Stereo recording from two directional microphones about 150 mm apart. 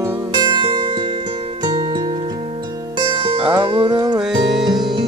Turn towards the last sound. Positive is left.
turn(degrees=0)  # may be behind; listen again after turning